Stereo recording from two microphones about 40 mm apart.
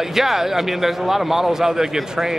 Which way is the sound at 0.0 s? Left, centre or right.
Centre.